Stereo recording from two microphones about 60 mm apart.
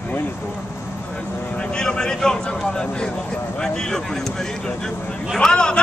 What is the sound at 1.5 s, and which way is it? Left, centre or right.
Speech, centre.